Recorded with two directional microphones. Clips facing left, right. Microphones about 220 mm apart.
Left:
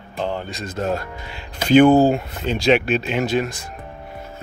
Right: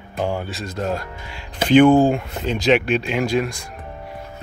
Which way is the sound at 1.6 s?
40° left (ahead or behind).